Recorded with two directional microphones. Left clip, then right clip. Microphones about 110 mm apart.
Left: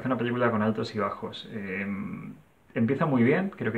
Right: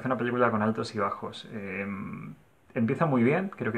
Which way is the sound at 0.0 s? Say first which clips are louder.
Right 1 dB; 35° right (ahead or behind).